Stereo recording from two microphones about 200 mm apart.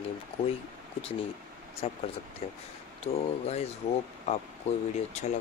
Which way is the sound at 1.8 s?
30° left (ahead or behind).